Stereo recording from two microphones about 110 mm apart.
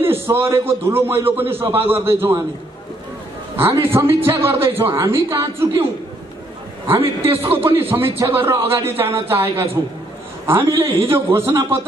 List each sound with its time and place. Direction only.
0.0 s a man's voice: 20° right (ahead or behind)
3.5 s a man's voice: 20° right (ahead or behind)
7.0 s a man's voice: 20° right (ahead or behind)